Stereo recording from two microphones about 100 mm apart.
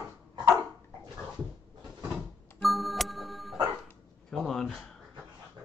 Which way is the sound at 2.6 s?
Centre (ahead or behind).